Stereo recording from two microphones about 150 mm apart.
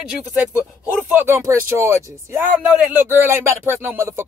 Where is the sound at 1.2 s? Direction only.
15° right (ahead or behind).